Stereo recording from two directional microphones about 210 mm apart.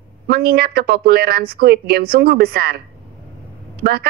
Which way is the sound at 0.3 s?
45° right (ahead or behind).